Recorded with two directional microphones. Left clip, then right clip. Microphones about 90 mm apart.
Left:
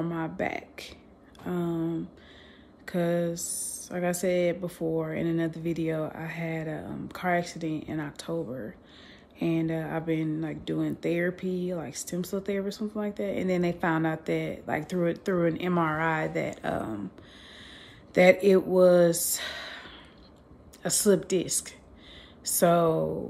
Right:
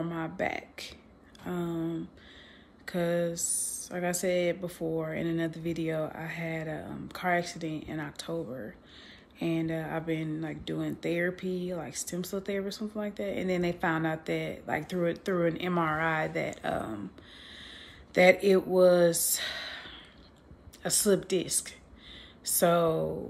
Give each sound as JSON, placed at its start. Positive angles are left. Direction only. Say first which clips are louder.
{"t": 0.0, "sound": "speech", "louder": "left 2 dB", "side_deg": 45}
{"t": 1.4, "sound": "a sound", "louder": "left 3 dB", "side_deg": 45}
{"t": 2.8, "sound": "speech", "louder": "left 2 dB", "side_deg": 45}
{"t": 9.4, "sound": "speech", "louder": "left 3 dB", "side_deg": 40}
{"t": 17.5, "sound": "a sound", "louder": "right 1 dB", "side_deg": 45}
{"t": 20.8, "sound": "a woman's voice", "louder": "left 3 dB", "side_deg": 45}